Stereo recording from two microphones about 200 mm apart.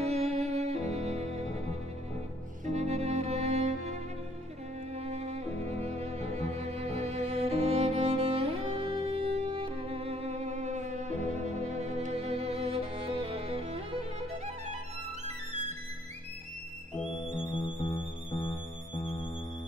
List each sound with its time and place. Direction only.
0.0 s music: 30° right (ahead or behind)
2.6 s music: 35° right (ahead or behind)
4.9 s music: 30° right (ahead or behind)
17.0 s music: 25° left (ahead or behind)